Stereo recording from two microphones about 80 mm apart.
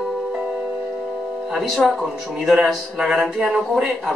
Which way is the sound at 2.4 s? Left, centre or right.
Centre.